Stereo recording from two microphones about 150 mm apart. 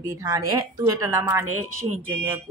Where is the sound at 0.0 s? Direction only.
20° right (ahead or behind).